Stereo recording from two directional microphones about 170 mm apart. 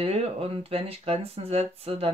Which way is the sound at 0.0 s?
35° right (ahead or behind).